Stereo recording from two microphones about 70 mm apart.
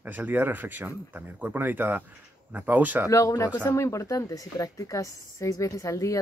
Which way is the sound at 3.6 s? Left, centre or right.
Left.